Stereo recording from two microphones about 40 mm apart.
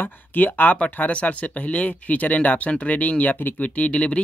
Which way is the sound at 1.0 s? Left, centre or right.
Left.